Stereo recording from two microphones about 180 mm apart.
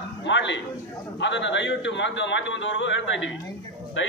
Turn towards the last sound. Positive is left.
turn(degrees=90)